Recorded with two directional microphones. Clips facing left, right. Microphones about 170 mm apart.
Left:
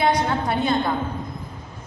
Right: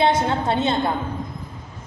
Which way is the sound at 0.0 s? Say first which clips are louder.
Right 2 dB; 25° right (ahead or behind).